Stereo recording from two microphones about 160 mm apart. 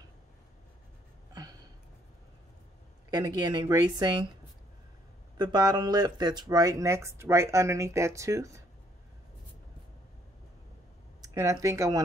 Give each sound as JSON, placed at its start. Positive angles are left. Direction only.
{"t": 3.1, "sound": "speech", "side_deg": -25}
{"t": 5.4, "sound": "speech", "side_deg": -25}
{"t": 11.1, "sound": "speech", "side_deg": -20}